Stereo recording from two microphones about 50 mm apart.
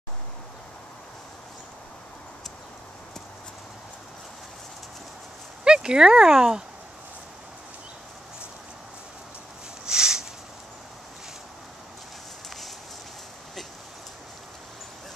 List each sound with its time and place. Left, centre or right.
5.6 s horse: centre
6.2 s speech: centre
9.8 s a sound: centre